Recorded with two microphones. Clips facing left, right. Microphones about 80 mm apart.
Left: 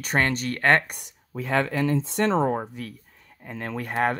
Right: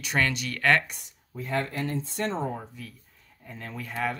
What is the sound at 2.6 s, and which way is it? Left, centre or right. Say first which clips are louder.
Speech: left 8 dB; left.